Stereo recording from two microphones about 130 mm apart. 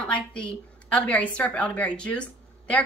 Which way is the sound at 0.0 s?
10° left (ahead or behind).